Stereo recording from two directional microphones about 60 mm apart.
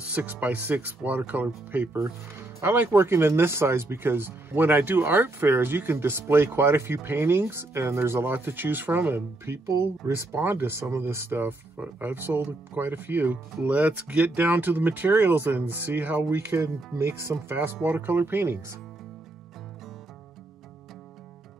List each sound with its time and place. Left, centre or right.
0.1 s speech: right
9.7 s speech: right
16.6 s speech: right
17.5 s speech: right